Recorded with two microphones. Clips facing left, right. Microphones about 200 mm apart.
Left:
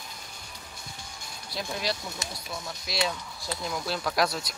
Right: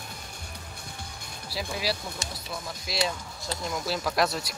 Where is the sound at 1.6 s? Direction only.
5° right (ahead or behind).